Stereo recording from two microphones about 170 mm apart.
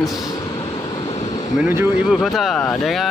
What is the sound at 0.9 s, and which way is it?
Waves, 35° left (ahead or behind).